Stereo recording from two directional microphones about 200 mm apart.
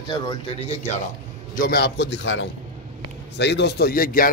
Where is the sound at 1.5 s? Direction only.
45° left (ahead or behind).